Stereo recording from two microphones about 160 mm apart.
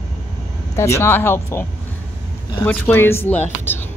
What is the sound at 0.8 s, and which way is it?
Speech, 15° left (ahead or behind).